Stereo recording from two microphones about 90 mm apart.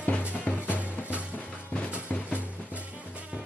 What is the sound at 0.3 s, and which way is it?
Music, 15° left (ahead or behind).